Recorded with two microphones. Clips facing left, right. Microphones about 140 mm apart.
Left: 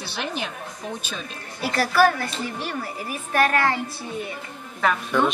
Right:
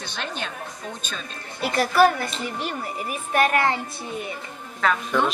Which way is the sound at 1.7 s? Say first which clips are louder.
Right 1 dB; 20° right (ahead or behind).